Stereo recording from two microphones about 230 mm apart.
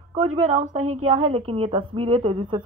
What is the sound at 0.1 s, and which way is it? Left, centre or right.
A woman's voice, right.